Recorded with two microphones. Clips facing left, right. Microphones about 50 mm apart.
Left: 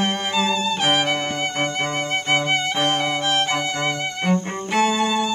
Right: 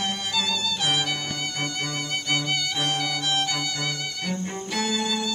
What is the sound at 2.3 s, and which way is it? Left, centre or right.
Music, left.